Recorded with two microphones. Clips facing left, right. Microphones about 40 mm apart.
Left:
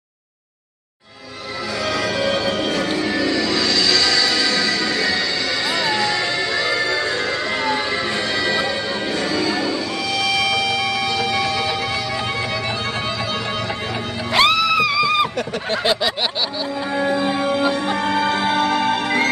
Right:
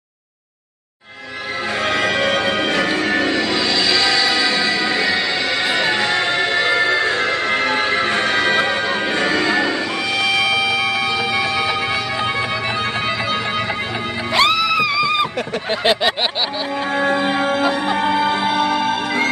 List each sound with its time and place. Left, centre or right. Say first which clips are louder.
1.9 s music: right 2 dB; right
10.1 s music: right 2 dB; right
10.5 s music: right 2 dB; right
14.3 s music: even; centre
15.7 s a sound: right 3 dB; right
16.9 s music: right 2 dB; right
17.9 s music: right 2 dB; centre